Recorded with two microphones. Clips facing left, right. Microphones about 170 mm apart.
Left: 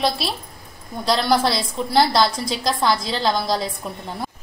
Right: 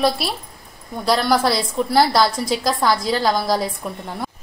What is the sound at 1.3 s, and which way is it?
A woman's voice, 5° right (ahead or behind).